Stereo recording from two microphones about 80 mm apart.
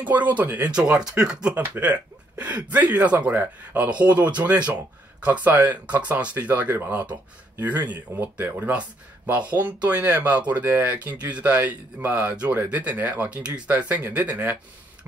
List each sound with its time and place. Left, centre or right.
0.0 s speech: centre
0.7 s speech: centre
1.5 s speech: right